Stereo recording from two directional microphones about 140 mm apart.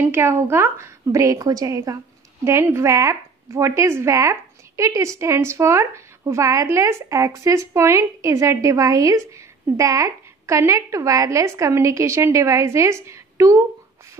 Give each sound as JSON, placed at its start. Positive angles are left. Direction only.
{"t": 0.0, "sound": "a woman's voice", "side_deg": -15}